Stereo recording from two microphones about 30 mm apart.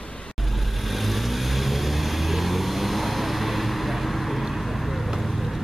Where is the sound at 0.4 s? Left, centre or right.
Centre.